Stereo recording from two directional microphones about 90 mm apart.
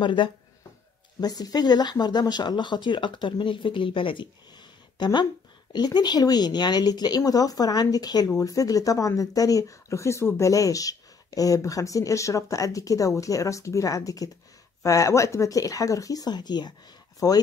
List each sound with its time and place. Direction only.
0.0 s speech: 65° left (ahead or behind)
1.2 s speech: 45° left (ahead or behind); by 4.3 s 70° left (ahead or behind)
4.9 s speech: 55° left (ahead or behind)
17.2 s speech: 40° left (ahead or behind)